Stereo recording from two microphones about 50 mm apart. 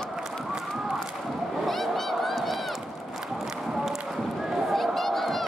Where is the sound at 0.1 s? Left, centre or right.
Centre.